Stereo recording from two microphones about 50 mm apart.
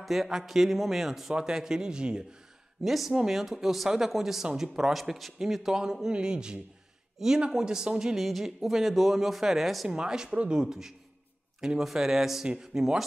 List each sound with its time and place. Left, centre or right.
0.0 s speech: centre
2.8 s speech: centre
9.8 s speech: centre